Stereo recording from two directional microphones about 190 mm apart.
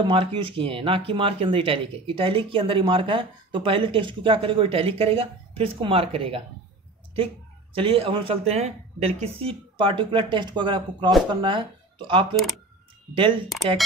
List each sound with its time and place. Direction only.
0.0 s speech: 25° right (ahead or behind)
7.7 s speech: 30° right (ahead or behind)